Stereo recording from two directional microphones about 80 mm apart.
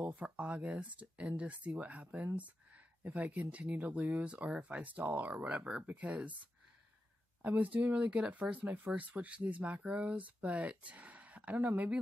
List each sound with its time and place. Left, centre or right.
0.0 s speech: centre
7.4 s speech: centre